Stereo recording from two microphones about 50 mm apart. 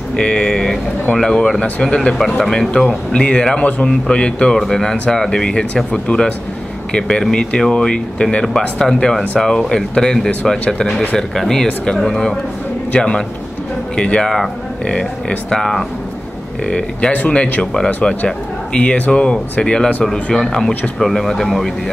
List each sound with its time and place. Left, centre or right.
0.1 s speech: centre
2.1 s speech: centre
2.8 s speech: centre
20.1 s speech: centre